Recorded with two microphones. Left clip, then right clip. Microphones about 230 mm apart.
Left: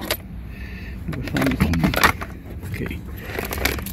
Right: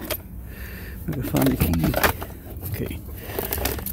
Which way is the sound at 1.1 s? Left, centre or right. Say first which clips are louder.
Right 1 dB; right.